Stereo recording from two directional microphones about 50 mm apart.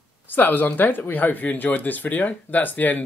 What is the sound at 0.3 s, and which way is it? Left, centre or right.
Speech, left.